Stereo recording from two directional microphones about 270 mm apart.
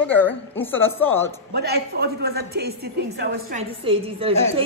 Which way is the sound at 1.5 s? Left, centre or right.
Right.